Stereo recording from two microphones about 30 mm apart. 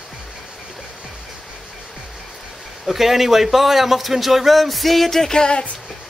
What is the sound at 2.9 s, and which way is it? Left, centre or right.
Speech, centre.